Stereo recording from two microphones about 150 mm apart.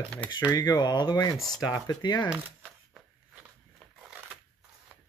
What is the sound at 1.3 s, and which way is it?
Speech, 5° right (ahead or behind).